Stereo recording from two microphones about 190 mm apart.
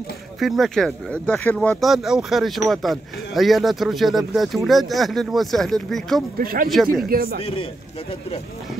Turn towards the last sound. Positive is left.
turn(degrees=30)  # may be behind; listen again after turning